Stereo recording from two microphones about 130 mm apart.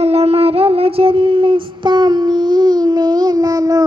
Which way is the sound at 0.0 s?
50° right (ahead or behind).